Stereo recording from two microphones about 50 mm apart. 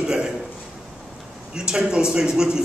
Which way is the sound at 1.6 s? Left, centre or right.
Centre.